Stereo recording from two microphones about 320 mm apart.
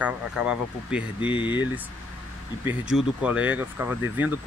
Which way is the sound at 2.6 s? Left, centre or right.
Centre.